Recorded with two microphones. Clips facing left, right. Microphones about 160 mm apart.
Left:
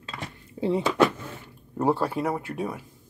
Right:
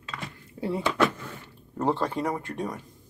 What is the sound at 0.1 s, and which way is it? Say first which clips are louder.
Dishes: left 1 dB; 20° left (ahead or behind).